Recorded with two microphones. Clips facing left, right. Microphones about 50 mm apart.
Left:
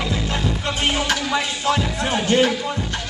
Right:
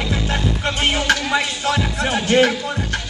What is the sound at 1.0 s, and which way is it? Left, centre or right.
Music, right.